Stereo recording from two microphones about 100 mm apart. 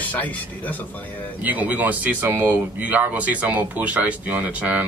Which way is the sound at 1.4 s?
15° right (ahead or behind).